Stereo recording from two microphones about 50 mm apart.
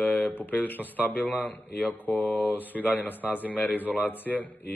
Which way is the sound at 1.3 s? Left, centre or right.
Centre.